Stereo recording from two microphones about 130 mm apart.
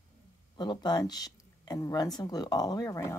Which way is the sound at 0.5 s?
35° left (ahead or behind).